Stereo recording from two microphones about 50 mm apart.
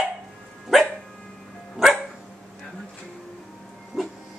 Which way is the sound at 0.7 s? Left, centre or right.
Centre.